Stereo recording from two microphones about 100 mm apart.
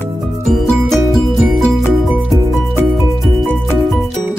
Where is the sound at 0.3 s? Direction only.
Centre (ahead or behind).